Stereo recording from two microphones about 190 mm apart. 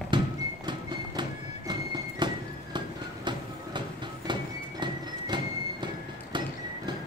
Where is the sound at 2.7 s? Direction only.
25° right (ahead or behind).